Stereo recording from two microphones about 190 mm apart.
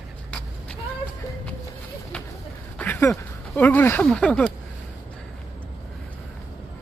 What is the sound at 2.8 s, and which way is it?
Speech, 10° left (ahead or behind).